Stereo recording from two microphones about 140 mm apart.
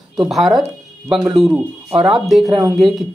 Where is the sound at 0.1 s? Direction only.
Centre (ahead or behind).